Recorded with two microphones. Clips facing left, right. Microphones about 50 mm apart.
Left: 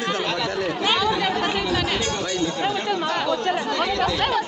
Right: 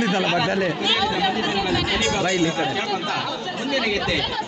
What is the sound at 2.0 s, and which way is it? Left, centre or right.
Speech, right.